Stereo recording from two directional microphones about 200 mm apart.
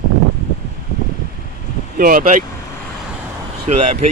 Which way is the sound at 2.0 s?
40° right (ahead or behind).